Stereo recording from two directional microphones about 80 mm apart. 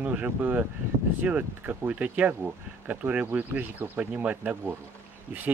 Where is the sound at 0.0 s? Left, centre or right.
Centre.